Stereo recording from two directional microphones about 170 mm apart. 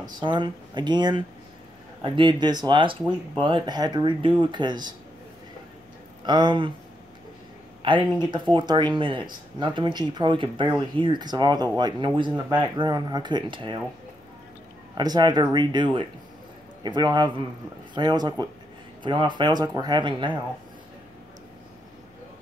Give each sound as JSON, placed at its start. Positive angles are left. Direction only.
{"t": 0.0, "sound": "speech", "side_deg": -25}
{"t": 6.2, "sound": "speech", "side_deg": -25}
{"t": 7.8, "sound": "speech", "side_deg": -30}
{"t": 15.0, "sound": "speech", "side_deg": -25}